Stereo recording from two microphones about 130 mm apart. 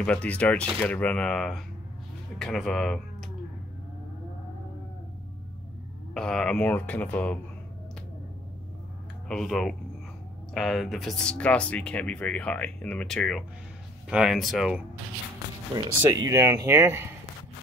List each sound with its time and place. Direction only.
0.0 s speech: 10° left (ahead or behind)
6.1 s speech: 5° left (ahead or behind)
9.3 s speech: 5° left (ahead or behind)
16.1 s speech: 30° right (ahead or behind)